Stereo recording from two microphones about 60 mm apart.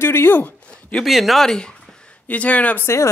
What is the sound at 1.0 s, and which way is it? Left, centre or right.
Speech, centre.